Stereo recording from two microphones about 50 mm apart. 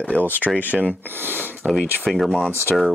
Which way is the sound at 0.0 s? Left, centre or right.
Left.